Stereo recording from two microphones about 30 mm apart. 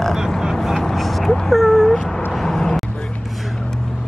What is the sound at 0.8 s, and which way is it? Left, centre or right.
Vehicle, centre.